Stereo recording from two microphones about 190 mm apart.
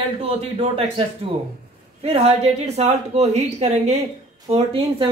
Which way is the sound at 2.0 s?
35° right (ahead or behind).